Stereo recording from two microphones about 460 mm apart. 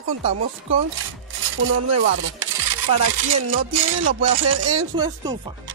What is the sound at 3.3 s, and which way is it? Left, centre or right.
Speech, right.